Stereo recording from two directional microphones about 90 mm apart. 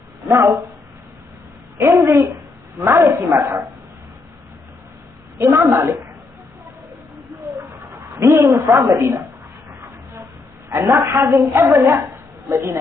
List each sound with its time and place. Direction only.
0.3 s a woman's voice: 35° right (ahead or behind)
1.8 s speech: 35° right (ahead or behind)
5.7 s a woman's voice: 40° right (ahead or behind)
7.5 s speech: 40° right (ahead or behind)
10.7 s a woman's voice: 30° right (ahead or behind)
11.7 s a woman's voice: 25° right (ahead or behind)
12.4 s a woman's voice: 40° right (ahead or behind)